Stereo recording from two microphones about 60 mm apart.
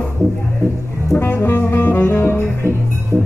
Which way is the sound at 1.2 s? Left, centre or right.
Left.